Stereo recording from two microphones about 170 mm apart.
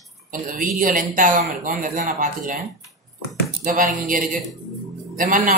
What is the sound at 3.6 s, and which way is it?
A woman's voice, 55° right (ahead or behind).